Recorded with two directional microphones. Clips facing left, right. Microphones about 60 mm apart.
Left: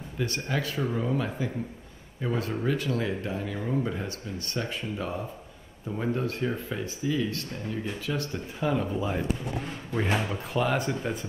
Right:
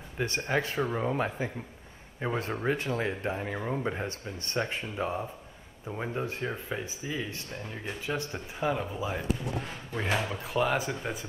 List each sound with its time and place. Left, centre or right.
0.2 s speech: right
8.6 s speech: centre